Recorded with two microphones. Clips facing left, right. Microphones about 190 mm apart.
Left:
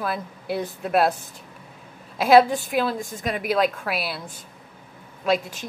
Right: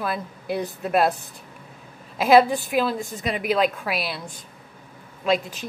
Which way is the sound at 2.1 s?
Centre (ahead or behind).